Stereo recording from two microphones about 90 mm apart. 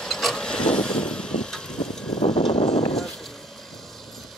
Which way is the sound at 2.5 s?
90° left.